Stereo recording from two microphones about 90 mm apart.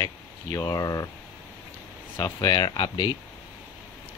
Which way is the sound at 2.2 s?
45° left (ahead or behind).